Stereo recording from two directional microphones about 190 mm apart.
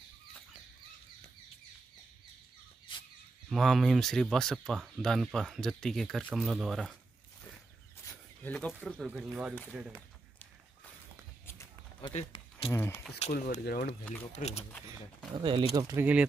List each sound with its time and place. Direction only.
2.9 s a sound: 25° left (ahead or behind)
3.4 s speech: centre (ahead or behind)
8.1 s speech: 5° left (ahead or behind)
12.0 s speech: 30° left (ahead or behind)
12.7 s speech: 15° left (ahead or behind)
13.2 s speech: 40° left (ahead or behind)
15.3 s speech: 25° right (ahead or behind)
15.7 s speech: 15° right (ahead or behind)